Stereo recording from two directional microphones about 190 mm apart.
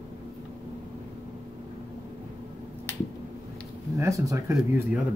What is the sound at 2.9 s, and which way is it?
Finger snapping, 10° left (ahead or behind).